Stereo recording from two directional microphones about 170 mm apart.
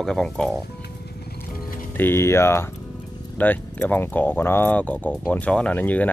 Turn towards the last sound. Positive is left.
turn(degrees=10)  # may be behind; listen again after turning